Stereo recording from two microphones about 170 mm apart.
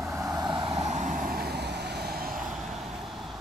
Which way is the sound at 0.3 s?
25° right (ahead or behind).